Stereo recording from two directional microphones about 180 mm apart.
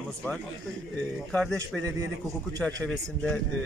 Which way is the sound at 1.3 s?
5° left (ahead or behind).